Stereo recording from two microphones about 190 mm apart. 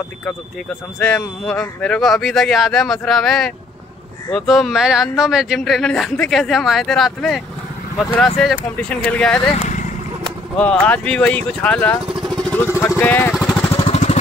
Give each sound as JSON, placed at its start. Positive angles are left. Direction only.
{"t": 0.9, "sound": "speech", "side_deg": 5}
{"t": 8.7, "sound": "speech", "side_deg": 5}
{"t": 10.6, "sound": "speech", "side_deg": 5}
{"t": 12.2, "sound": "vehicle", "side_deg": 5}
{"t": 12.7, "sound": "speech", "side_deg": 15}
{"t": 13.4, "sound": "vehicle", "side_deg": 5}
{"t": 13.7, "sound": "vehicle", "side_deg": 30}